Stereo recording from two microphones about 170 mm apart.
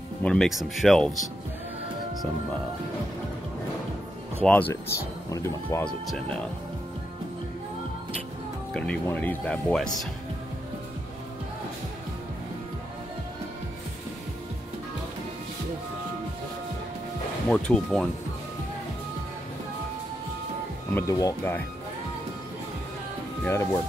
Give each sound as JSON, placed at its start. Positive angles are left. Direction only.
{"t": 0.2, "sound": "speech", "side_deg": 5}
{"t": 4.4, "sound": "speech", "side_deg": 10}
{"t": 5.9, "sound": "speech", "side_deg": 5}
{"t": 8.7, "sound": "speech", "side_deg": 5}
{"t": 17.5, "sound": "speech", "side_deg": 5}
{"t": 20.9, "sound": "speech", "side_deg": 20}
{"t": 23.4, "sound": "speech", "side_deg": 15}